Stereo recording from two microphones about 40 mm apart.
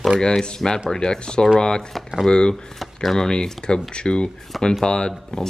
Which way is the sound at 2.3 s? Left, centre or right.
Left.